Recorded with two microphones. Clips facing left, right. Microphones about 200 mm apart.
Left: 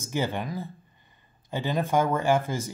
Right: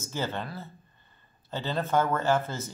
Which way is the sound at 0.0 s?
15° left (ahead or behind).